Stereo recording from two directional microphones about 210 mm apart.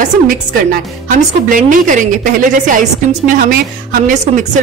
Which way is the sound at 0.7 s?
40° right (ahead or behind).